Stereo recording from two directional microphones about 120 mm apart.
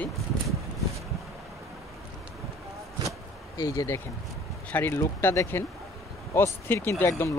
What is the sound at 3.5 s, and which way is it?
Speech, 30° left (ahead or behind).